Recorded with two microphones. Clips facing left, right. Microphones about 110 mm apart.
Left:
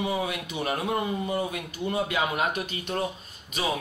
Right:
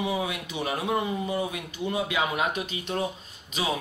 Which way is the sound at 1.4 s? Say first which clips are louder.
Even; 50° left (ahead or behind).